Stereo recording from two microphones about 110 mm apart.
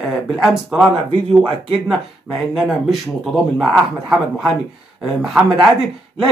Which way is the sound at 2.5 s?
Centre (ahead or behind).